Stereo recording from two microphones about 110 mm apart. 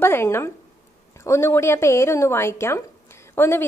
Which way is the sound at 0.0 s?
20° left (ahead or behind).